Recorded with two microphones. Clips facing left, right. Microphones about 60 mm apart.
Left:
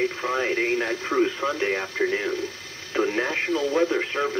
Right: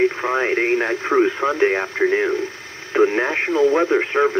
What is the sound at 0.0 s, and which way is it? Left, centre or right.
Speech, right.